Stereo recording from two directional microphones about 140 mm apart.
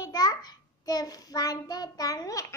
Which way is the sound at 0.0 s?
30° left (ahead or behind).